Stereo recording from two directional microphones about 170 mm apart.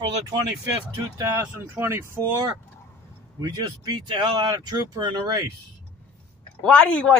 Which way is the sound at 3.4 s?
25° right (ahead or behind).